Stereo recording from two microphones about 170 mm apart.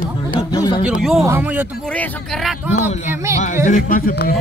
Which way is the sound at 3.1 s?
15° right (ahead or behind).